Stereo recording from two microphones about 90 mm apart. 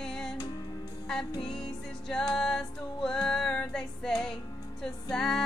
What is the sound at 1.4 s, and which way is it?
Music, 5° left (ahead or behind).